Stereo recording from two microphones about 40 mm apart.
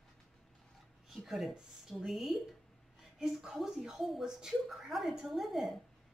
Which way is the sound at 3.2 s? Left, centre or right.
Centre.